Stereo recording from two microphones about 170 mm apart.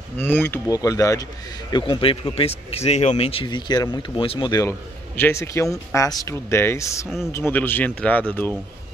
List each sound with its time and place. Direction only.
0.2 s speech: 10° left (ahead or behind)